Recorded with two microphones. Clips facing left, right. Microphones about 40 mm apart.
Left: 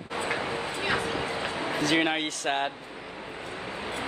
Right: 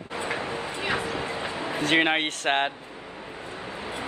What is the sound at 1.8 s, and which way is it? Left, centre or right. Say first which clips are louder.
Speech: right 4 dB; right.